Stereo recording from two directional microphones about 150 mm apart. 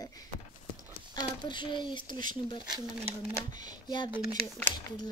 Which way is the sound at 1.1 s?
30° left (ahead or behind).